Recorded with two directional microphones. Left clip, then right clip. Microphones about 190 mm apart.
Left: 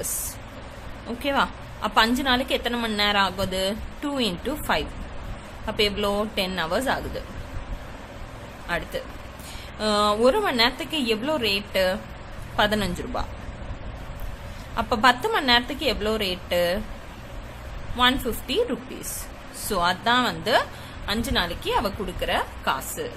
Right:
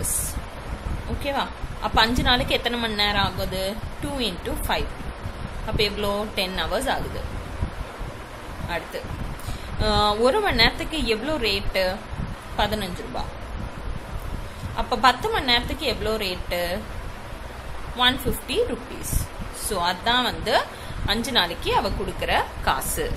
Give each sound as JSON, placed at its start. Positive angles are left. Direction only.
{"t": 1.2, "sound": "a woman's voice", "side_deg": 20}
{"t": 8.7, "sound": "a woman's voice", "side_deg": 20}
{"t": 14.8, "sound": "a woman's voice", "side_deg": 20}
{"t": 17.9, "sound": "a woman's voice", "side_deg": 20}
{"t": 19.7, "sound": "a woman's voice", "side_deg": 20}